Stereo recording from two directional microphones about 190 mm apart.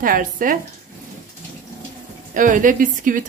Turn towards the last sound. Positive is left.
turn(degrees=-45)  # may be behind; listen again after turning